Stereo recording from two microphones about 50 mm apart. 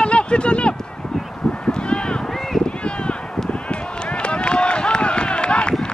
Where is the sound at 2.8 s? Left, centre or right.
Left.